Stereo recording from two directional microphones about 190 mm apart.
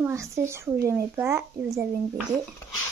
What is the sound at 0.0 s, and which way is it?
Speech, 15° right (ahead or behind).